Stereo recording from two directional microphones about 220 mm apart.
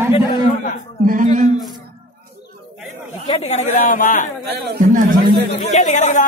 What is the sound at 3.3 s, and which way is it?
A man's voice, 30° left (ahead or behind).